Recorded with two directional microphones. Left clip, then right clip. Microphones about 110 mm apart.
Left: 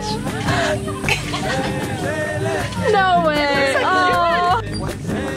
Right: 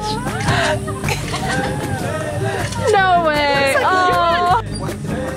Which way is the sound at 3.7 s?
10° right (ahead or behind).